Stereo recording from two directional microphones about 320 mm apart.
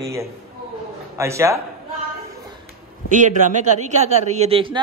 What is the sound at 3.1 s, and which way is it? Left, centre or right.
A man's voice, right.